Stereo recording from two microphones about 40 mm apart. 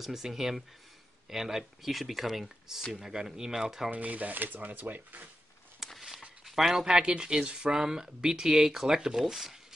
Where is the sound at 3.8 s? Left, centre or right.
Right.